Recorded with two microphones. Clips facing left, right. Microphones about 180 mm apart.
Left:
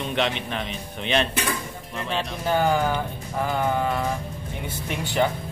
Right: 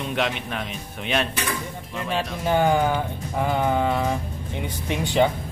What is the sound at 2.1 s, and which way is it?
Speech, 10° right (ahead or behind).